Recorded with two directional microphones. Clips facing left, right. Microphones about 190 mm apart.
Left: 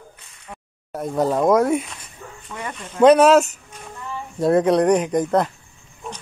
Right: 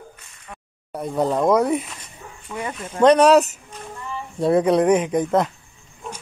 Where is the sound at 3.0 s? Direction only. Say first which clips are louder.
Left 1 dB; 5° left (ahead or behind).